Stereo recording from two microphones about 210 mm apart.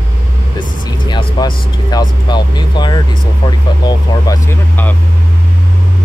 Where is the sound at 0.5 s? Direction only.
20° left (ahead or behind).